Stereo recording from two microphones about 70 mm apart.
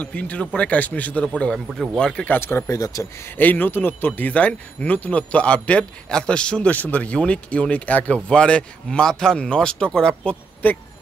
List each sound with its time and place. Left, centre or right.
0.0 s a man's voice: left
2.2 s speech: left
3.3 s speech: left
10.6 s a man's voice: left